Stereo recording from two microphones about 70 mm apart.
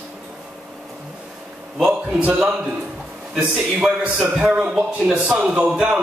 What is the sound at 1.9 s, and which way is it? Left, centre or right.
Speech, centre.